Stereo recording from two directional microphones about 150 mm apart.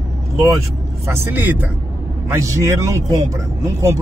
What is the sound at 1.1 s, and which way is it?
A man's voice, 15° right (ahead or behind).